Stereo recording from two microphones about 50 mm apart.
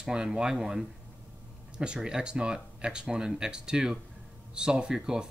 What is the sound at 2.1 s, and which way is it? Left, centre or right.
Speech, centre.